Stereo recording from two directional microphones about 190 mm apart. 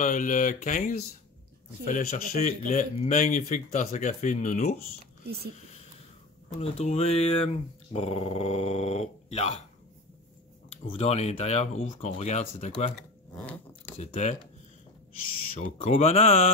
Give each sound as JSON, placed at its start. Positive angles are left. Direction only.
{"t": 0.0, "sound": "speech", "side_deg": 40}
{"t": 5.2, "sound": "speech", "side_deg": -55}
{"t": 6.6, "sound": "speech", "side_deg": 35}
{"t": 10.7, "sound": "speech", "side_deg": 30}
{"t": 13.4, "sound": "a sound", "side_deg": 5}
{"t": 13.9, "sound": "speech", "side_deg": 35}
{"t": 15.8, "sound": "speech", "side_deg": 30}